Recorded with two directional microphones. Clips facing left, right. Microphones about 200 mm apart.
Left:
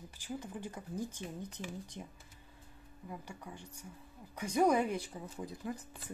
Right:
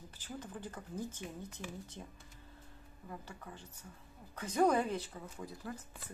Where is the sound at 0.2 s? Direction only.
10° left (ahead or behind).